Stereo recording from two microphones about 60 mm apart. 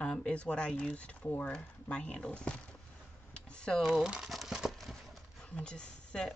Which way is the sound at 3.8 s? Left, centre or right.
Centre.